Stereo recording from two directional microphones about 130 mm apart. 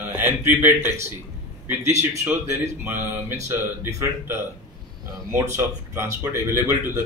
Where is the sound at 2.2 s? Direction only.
20° right (ahead or behind).